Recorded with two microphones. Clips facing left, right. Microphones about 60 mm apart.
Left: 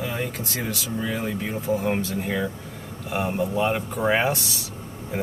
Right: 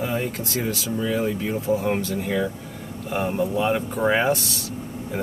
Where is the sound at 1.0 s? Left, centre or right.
Centre.